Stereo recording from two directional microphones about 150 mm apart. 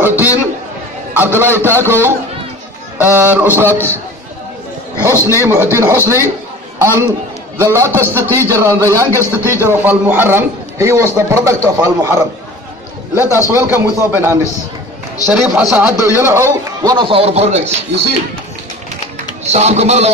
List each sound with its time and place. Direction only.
0.0 s a sound: 10° right (ahead or behind)
1.1 s a man's voice: 15° right (ahead or behind)
3.2 s a man's voice: 10° right (ahead or behind)
3.7 s a man's voice: 15° left (ahead or behind)
5.2 s a man's voice: 20° right (ahead or behind)
15.5 s a man's voice: 10° right (ahead or behind)
16.8 s a man's voice: 35° right (ahead or behind)
19.4 s speech: 45° right (ahead or behind)